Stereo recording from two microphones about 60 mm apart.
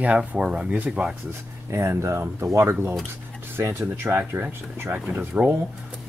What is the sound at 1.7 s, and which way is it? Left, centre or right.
Speech, right.